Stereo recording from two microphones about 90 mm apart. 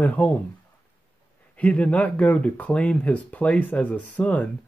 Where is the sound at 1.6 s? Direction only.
15° left (ahead or behind).